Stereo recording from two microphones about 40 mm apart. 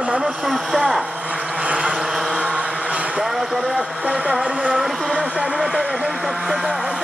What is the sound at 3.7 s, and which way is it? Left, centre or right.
Vehicle, right.